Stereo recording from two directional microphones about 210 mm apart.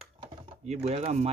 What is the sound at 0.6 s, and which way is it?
Speech, 30° right (ahead or behind).